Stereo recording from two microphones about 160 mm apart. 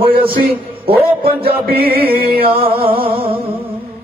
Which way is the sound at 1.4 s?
70° right (ahead or behind).